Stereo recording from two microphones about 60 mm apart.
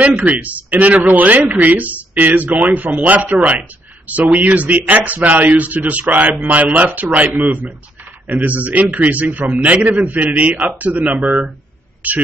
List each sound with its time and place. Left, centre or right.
0.2 s a man's voice: right